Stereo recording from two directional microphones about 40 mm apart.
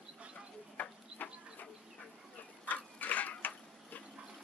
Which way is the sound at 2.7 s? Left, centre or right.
Left.